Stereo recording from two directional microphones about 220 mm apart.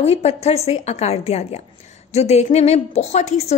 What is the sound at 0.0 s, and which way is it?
A woman's voice, 30° left (ahead or behind).